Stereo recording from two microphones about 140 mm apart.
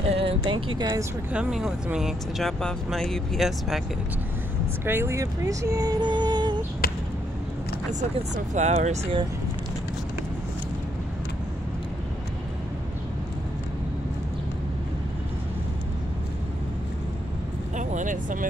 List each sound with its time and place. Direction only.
0.1 s speech: 40° right (ahead or behind)
1.3 s speech: 5° right (ahead or behind)
4.8 s speech: 15° right (ahead or behind); by 6.6 s 30° right (ahead or behind)
8.0 s speech: 55° right (ahead or behind)
17.7 s vehicle: 65° right (ahead or behind)